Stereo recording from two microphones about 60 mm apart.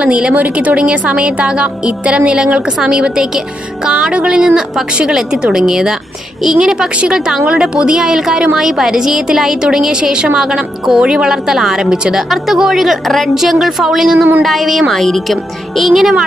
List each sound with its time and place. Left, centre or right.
0.0 s a woman's voice: centre